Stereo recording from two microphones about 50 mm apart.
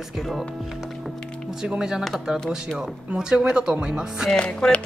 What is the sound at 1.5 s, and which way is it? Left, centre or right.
Speech, centre.